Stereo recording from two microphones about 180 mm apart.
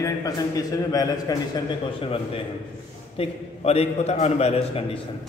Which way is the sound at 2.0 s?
30° left (ahead or behind).